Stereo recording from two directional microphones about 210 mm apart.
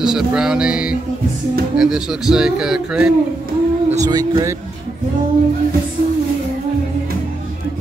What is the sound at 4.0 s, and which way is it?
Speech, 20° right (ahead or behind).